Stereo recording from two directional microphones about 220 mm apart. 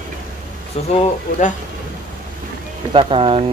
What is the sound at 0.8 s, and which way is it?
Speech, 30° left (ahead or behind).